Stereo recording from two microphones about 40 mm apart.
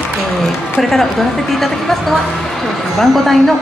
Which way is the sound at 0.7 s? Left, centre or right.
Centre.